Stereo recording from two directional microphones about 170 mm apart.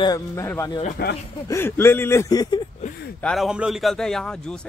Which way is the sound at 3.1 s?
5° left (ahead or behind).